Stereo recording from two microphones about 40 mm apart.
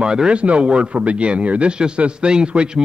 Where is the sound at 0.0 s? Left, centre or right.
Right.